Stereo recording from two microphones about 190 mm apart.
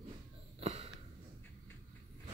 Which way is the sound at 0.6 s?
35° right (ahead or behind).